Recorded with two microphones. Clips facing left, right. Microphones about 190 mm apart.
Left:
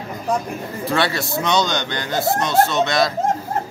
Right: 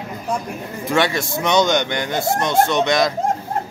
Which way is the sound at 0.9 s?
15° right (ahead or behind).